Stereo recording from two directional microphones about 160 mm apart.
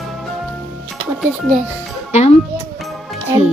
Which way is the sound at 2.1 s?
45° left (ahead or behind).